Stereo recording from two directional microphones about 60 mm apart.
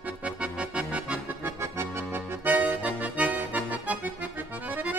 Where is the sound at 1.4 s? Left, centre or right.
Right.